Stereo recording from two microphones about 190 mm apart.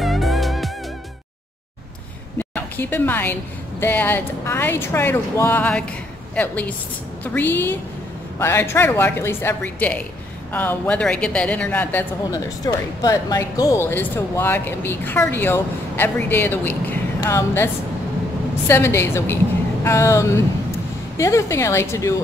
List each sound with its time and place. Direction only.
0.0 s music: centre (ahead or behind)
2.3 s a sound: 10° left (ahead or behind)
3.8 s a woman's voice: 10° left (ahead or behind)
18.7 s a woman's voice: 15° left (ahead or behind)